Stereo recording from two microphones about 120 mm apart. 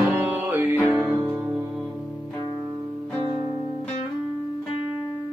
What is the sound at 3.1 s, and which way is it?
Music, 40° right (ahead or behind).